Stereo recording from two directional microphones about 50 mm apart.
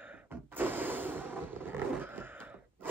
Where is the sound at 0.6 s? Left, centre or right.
Right.